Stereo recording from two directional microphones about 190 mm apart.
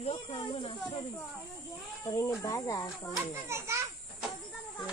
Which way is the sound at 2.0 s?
15° left (ahead or behind).